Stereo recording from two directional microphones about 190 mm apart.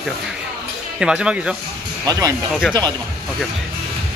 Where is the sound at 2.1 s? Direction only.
15° right (ahead or behind).